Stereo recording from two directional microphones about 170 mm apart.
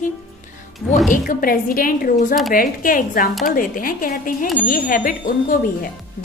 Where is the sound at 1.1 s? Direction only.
55° left (ahead or behind).